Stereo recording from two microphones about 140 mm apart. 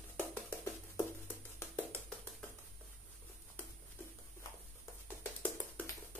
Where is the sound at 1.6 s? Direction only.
20° left (ahead or behind).